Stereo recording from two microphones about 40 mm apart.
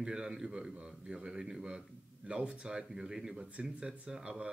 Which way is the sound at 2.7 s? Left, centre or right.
Centre.